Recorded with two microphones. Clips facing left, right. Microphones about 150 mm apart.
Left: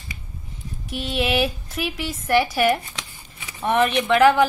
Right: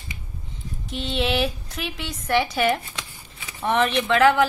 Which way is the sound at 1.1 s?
10° left (ahead or behind).